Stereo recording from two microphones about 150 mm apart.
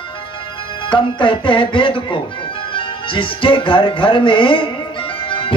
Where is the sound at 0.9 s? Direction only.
35° left (ahead or behind).